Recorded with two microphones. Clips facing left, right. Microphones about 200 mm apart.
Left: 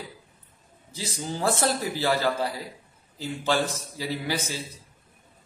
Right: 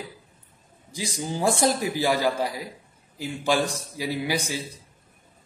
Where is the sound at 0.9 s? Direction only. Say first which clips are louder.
Right 3 dB; 15° right (ahead or behind).